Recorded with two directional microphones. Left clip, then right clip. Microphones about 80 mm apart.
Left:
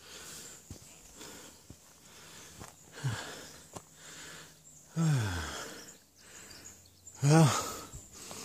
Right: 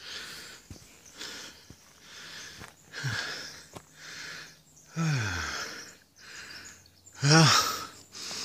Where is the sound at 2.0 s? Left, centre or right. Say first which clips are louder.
Right 9 dB; centre.